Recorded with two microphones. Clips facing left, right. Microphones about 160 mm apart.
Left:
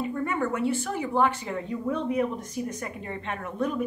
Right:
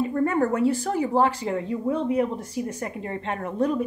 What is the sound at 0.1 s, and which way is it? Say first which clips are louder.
A woman's voice: right 6 dB; 40° right (ahead or behind).